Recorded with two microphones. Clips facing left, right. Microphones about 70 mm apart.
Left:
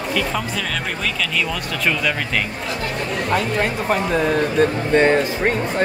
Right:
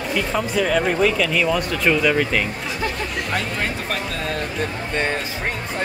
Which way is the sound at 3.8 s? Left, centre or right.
Centre.